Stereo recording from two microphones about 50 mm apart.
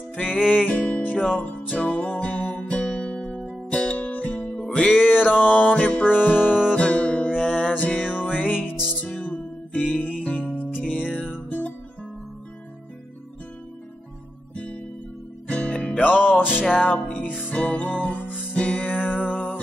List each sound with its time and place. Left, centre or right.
0.1 s music: left
5.0 s music: left
15.4 s music: left
16.0 s music: left